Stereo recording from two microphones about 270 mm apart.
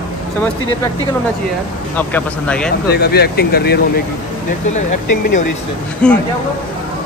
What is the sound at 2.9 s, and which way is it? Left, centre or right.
Speech, left.